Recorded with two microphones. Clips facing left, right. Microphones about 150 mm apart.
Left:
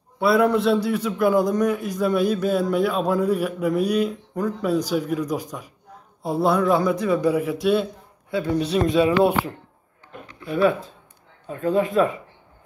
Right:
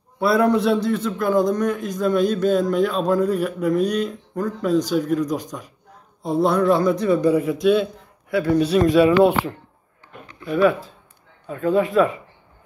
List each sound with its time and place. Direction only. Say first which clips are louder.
0.2 s a man's voice: right 1 dB; centre (ahead or behind)
8.5 s speech: right 4 dB; 25° left (ahead or behind)
10.4 s speech: right 2 dB; 35° left (ahead or behind)